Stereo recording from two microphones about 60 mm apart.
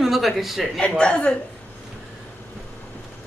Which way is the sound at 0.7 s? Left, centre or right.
Centre.